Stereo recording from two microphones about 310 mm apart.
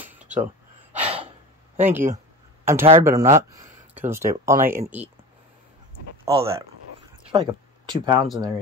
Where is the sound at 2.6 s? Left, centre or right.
Centre.